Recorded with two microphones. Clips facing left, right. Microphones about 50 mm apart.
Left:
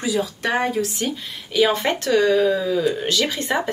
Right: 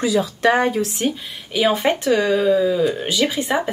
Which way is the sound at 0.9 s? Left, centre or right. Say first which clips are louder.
Right 3 dB; centre.